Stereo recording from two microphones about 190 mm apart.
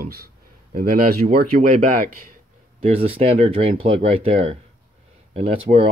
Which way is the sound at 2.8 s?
30° right (ahead or behind).